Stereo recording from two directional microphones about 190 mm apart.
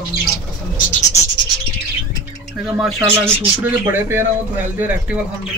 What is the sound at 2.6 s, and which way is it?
Speech, 5° right (ahead or behind).